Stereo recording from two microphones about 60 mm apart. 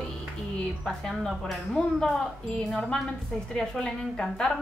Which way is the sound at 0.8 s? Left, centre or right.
Centre.